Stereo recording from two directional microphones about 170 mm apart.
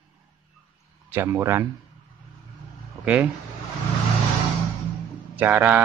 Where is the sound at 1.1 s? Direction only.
15° right (ahead or behind).